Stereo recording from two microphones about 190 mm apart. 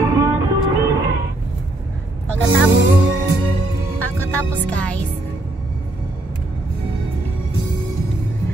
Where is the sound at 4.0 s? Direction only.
10° left (ahead or behind).